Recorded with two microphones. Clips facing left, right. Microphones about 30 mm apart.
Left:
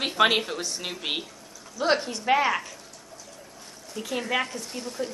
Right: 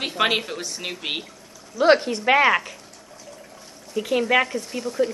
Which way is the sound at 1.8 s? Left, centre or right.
Right.